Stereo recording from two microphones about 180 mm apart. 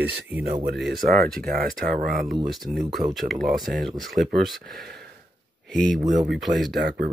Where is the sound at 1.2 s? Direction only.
55° right (ahead or behind).